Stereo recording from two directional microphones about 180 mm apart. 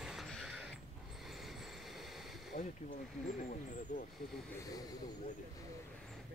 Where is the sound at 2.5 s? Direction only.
50° left (ahead or behind).